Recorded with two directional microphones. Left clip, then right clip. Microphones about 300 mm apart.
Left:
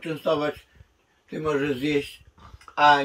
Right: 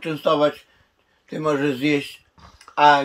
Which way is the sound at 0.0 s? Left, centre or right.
Centre.